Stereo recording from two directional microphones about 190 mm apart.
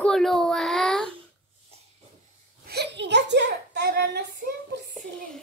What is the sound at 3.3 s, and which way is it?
Hands, 65° right (ahead or behind).